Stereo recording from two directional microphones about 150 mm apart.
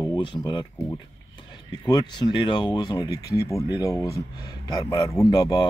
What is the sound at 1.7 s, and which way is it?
Speech, 30° left (ahead or behind).